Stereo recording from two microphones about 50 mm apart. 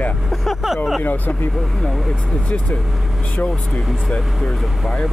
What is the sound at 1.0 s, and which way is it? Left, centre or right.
Speech, left.